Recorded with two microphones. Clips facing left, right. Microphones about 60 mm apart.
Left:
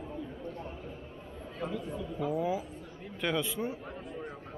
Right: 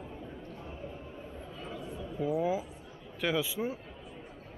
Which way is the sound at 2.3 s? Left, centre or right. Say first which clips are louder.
Right 1 dB; centre.